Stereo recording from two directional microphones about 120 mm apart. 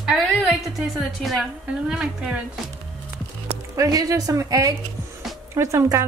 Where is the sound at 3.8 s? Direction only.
30° right (ahead or behind).